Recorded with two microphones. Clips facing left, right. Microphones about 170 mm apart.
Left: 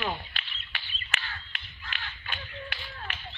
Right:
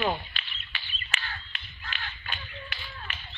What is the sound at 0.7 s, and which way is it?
Bird, 70° left (ahead or behind).